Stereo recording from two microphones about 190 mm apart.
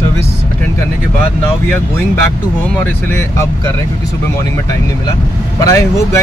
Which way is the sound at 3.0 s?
15° left (ahead or behind).